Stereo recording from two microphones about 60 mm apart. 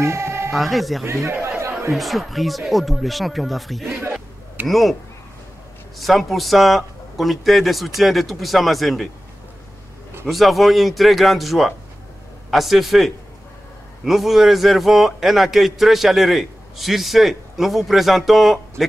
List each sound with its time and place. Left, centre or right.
0.0 s music: right
0.5 s a man's voice: centre
1.0 s speech: right
1.9 s a man's voice: centre
5.9 s a man's voice: centre
10.2 s a man's voice: centre